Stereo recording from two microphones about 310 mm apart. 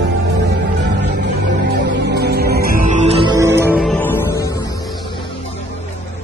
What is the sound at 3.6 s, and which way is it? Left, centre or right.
Music, centre.